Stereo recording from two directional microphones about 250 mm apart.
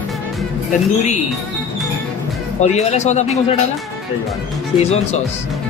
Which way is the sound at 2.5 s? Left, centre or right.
Left.